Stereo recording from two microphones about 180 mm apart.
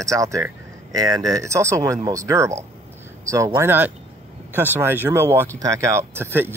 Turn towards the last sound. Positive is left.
turn(degrees=-10)  # may be behind; listen again after turning